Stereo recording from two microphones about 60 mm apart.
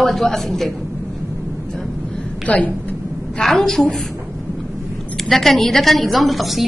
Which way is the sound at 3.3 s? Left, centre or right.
Centre.